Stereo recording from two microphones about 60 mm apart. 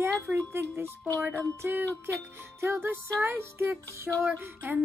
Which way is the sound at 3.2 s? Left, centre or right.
Right.